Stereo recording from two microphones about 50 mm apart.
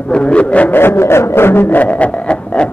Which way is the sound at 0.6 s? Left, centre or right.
Left.